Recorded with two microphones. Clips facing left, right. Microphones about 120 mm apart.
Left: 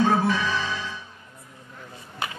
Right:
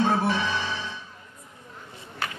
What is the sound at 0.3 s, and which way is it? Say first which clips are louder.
Music: left 1 dB; 25° right (ahead or behind).